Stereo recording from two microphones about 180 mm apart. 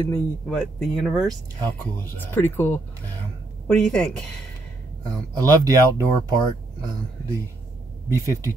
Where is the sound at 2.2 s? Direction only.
10° left (ahead or behind).